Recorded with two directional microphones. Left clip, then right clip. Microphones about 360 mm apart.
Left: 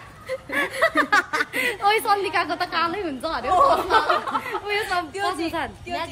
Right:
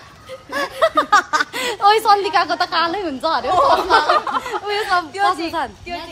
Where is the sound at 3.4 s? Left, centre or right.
Right.